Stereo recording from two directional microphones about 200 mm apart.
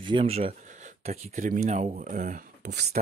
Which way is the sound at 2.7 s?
55° right (ahead or behind).